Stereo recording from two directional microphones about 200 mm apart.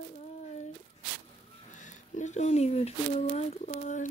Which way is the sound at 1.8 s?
35° left (ahead or behind).